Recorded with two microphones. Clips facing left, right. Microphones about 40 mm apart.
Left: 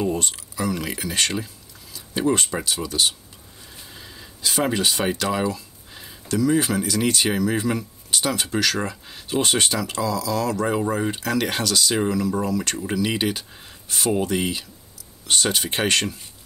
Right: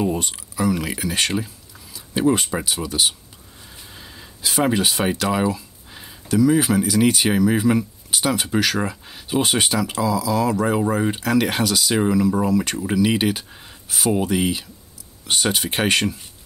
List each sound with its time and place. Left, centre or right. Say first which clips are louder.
0.0 s speech: right 1 dB; centre